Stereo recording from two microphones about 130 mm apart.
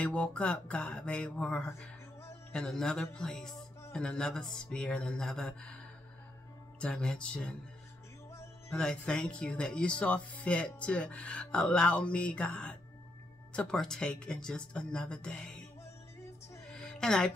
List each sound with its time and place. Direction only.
0.0 s speech: 10° left (ahead or behind)
6.8 s speech: 5° left (ahead or behind)
8.3 s music: 20° left (ahead or behind)
8.7 s speech: 5° left (ahead or behind)
16.6 s music: 5° left (ahead or behind)